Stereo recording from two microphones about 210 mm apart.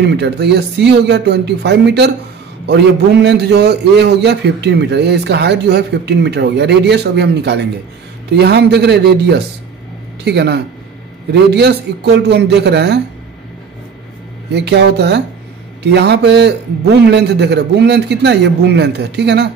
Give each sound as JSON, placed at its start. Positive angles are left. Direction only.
{"t": 0.0, "sound": "a man's voice", "side_deg": -55}
{"t": 14.5, "sound": "a man's voice", "side_deg": -55}